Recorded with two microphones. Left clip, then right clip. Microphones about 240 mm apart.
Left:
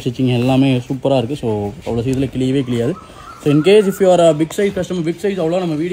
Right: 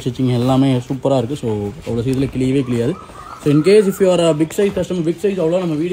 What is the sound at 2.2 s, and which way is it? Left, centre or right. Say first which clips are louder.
Speech: even; centre.